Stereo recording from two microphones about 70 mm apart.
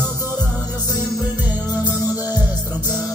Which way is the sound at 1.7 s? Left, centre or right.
Right.